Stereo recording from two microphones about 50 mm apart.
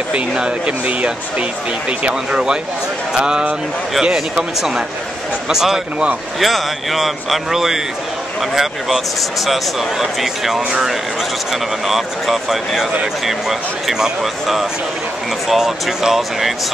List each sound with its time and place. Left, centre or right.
0.7 s speech: right; by 16.5 s centre